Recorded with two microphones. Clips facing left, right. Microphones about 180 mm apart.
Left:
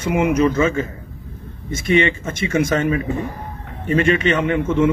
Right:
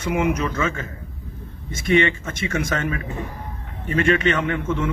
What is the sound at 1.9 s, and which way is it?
Speech, 20° left (ahead or behind).